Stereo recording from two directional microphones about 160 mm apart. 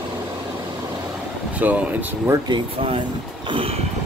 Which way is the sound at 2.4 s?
30° right (ahead or behind).